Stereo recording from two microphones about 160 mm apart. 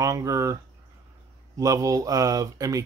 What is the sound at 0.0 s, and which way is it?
Speech, 20° right (ahead or behind).